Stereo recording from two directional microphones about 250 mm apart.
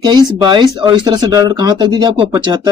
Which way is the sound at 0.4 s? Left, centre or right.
Centre.